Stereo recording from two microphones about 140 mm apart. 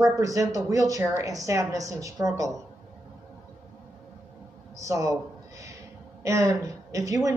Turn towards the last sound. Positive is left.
turn(degrees=-25)  # may be behind; listen again after turning